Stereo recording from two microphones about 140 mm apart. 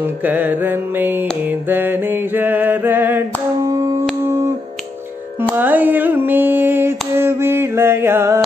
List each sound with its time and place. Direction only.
0.0 s mantra: 10° right (ahead or behind)
3.6 s music: 25° right (ahead or behind)
5.6 s a sound: 15° right (ahead or behind)